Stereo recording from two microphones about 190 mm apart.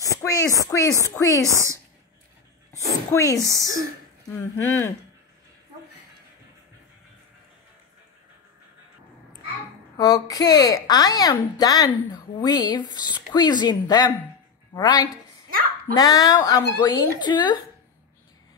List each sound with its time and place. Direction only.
0.0 s a sound: 15° left (ahead or behind)
0.7 s speech: 15° left (ahead or behind)
2.7 s a sound: 15° right (ahead or behind)
3.1 s speech: 15° left (ahead or behind)
3.4 s speech: 15° right (ahead or behind)
4.4 s speech: 10° left (ahead or behind)
9.9 s a woman's voice: 20° left (ahead or behind)